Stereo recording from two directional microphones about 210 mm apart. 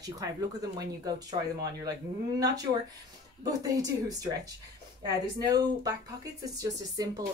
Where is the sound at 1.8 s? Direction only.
15° right (ahead or behind).